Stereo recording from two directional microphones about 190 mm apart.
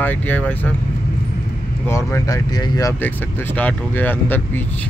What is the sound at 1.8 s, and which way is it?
Speech, 15° left (ahead or behind).